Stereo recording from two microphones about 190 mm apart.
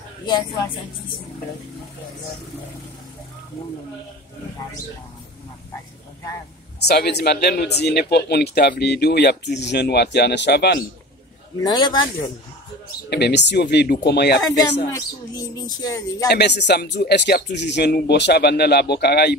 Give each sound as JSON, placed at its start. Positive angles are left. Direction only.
{"t": 6.8, "sound": "speech", "side_deg": 60}
{"t": 11.6, "sound": "speech", "side_deg": 25}
{"t": 13.1, "sound": "speech", "side_deg": 65}
{"t": 14.9, "sound": "speech", "side_deg": 20}
{"t": 16.3, "sound": "speech", "side_deg": 60}